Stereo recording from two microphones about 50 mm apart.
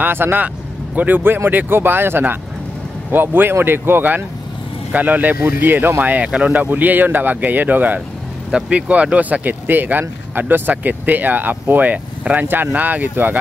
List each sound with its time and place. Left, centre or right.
0.0 s speech: right
8.5 s speech: centre; by 13.4 s right